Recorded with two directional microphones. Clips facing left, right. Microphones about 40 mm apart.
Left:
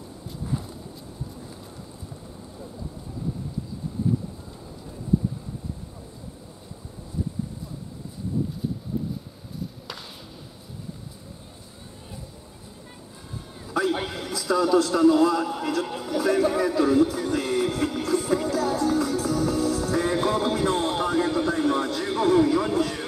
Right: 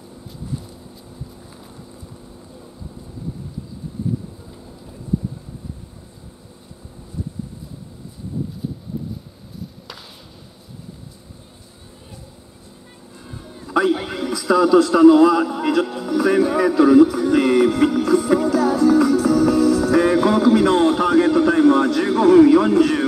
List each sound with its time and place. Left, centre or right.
8.6 s a sound: centre
14.3 s a man's voice: right
18.5 s music: right